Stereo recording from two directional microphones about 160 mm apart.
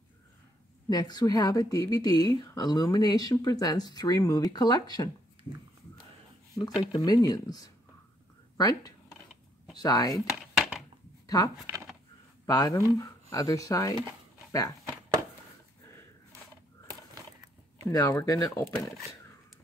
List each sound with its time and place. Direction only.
0.8 s a woman's voice: 25° left (ahead or behind)
6.8 s a woman's voice: 25° left (ahead or behind)
10.2 s a sound: 5° right (ahead or behind)
11.2 s a woman's voice: 20° left (ahead or behind)
14.5 s a sound: 20° left (ahead or behind)
17.8 s a woman's voice: 20° left (ahead or behind)